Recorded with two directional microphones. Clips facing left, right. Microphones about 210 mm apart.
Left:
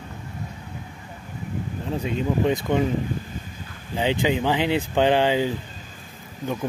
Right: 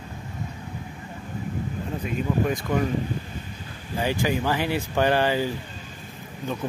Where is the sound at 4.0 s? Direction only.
20° left (ahead or behind).